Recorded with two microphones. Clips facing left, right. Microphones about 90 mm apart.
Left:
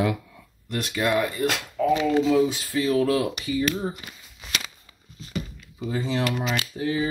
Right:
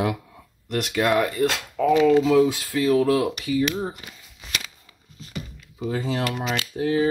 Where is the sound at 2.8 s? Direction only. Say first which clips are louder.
Right 3 dB; 40° right (ahead or behind).